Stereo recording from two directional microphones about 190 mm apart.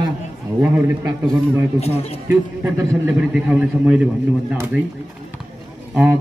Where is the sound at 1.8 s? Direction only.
30° left (ahead or behind).